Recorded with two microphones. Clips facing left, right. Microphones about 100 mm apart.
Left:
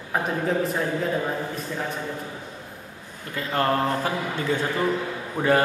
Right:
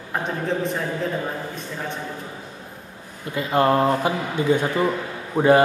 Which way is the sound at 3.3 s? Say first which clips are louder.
Right 5 dB; 15° right (ahead or behind).